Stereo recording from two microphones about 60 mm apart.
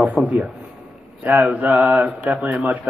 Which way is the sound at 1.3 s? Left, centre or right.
Centre.